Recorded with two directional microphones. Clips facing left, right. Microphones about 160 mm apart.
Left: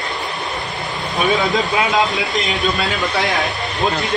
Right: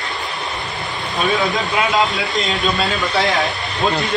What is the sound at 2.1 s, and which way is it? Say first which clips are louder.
Speech: even; 20° left (ahead or behind).